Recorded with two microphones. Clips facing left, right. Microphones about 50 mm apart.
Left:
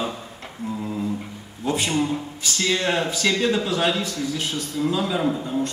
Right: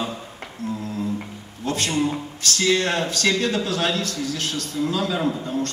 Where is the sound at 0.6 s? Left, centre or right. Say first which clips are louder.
Right 1 dB; right.